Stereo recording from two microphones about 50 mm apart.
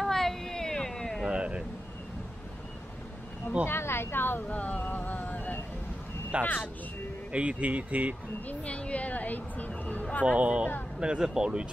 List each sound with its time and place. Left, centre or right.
0.0 s a sound: centre
1.3 s a sound: centre
3.6 s speech: left
4.5 s vehicle: left
6.3 s speech: right
8.5 s speech: left
10.2 s speech: right